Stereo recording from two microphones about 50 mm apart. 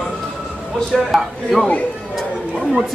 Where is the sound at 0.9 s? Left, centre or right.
Centre.